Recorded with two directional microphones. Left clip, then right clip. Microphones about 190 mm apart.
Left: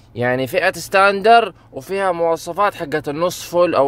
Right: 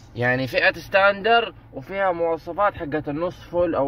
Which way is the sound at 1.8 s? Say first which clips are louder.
Left 4 dB; 40° left (ahead or behind).